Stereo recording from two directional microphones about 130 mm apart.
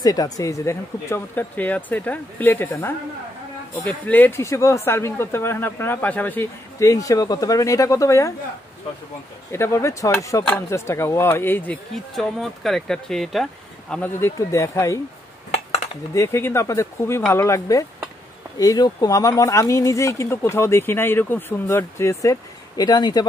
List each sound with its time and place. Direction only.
0.0 s speech: 30° left (ahead or behind)
6.9 s speech: 25° left (ahead or behind)
9.5 s speech: 20° left (ahead or behind)
14.2 s speech: 20° left (ahead or behind)
15.5 s cutlery: 55° left (ahead or behind)
16.2 s speech: 20° left (ahead or behind)